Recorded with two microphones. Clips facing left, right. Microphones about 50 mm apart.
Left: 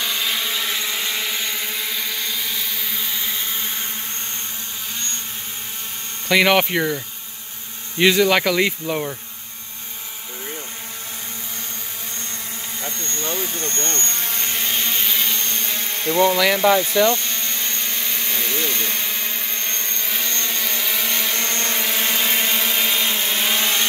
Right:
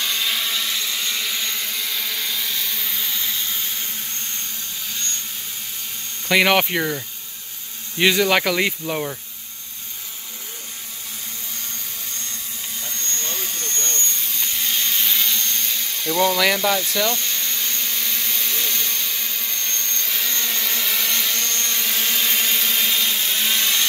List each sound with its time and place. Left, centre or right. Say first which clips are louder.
0.0 s vehicle: even; centre
6.2 s speech: left 1 dB; centre
8.0 s speech: left 2 dB; centre
12.9 s helicopter: left 3 dB; centre
13.6 s vehicle: left 3 dB; left
13.9 s helicopter: left 2 dB; left
14.6 s a sound: even; left
15.8 s a sound: left 3 dB; left
16.5 s a sound: left 5 dB; centre
20.2 s vehicle: even; centre; by 21.8 s left
21.8 s vehicle: even; centre